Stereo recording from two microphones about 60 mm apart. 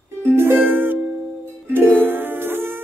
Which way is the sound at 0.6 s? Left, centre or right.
Right.